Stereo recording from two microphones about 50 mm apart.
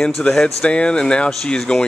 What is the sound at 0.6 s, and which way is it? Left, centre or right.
Speech, left.